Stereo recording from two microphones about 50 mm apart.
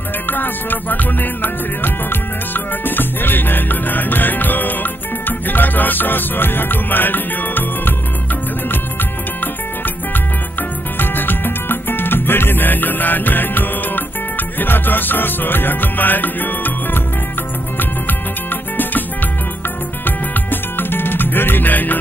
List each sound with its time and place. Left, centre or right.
0.3 s music: left
11.0 s music: left
20.1 s music: left